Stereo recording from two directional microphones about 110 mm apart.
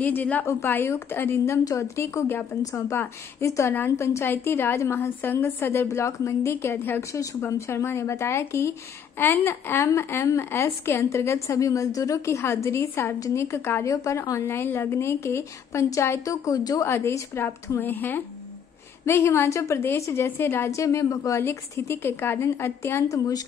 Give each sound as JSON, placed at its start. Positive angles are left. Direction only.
{"t": 0.0, "sound": "a woman's voice", "side_deg": 15}